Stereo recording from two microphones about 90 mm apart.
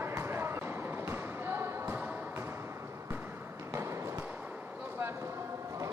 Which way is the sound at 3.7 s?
30° right (ahead or behind).